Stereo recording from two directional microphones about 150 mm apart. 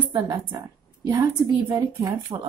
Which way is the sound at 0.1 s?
30° right (ahead or behind).